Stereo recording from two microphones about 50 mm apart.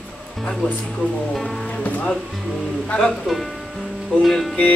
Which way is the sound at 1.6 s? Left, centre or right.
Left.